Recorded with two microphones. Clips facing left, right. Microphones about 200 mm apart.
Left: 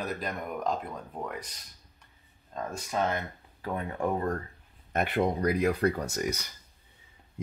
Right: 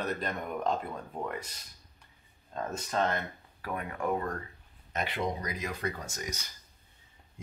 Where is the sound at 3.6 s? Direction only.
25° left (ahead or behind).